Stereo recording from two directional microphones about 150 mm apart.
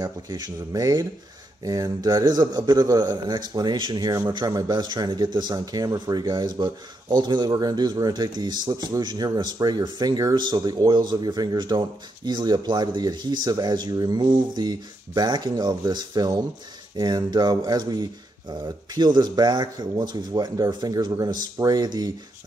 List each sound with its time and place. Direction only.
0.0 s a man's voice: 25° right (ahead or behind)